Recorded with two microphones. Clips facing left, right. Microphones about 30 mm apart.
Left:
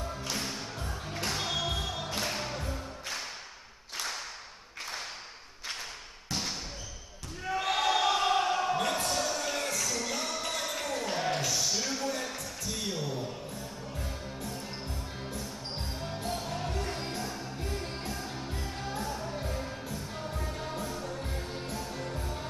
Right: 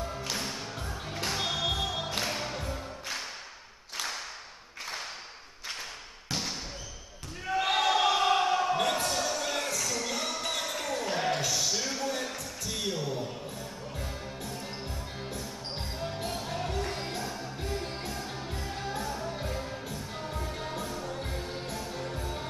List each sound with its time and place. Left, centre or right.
0.0 s music: centre
3.9 s a sound: centre
7.4 s basketball bounce: centre
8.0 s a sound: centre
8.8 s basketball bounce: centre
9.8 s music: centre
10.0 s music: centre
10.6 s a sound: centre
12.6 s music: right
15.2 s music: right
16.3 s music: centre
21.3 s music: centre